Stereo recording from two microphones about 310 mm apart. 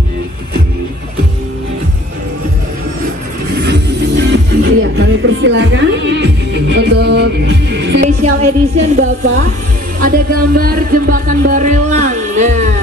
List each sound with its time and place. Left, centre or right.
3.6 s music: right
8.2 s speech: right
9.9 s music: right